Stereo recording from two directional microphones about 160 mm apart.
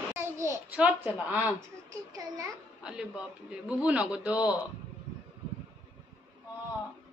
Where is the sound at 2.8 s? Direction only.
5° right (ahead or behind).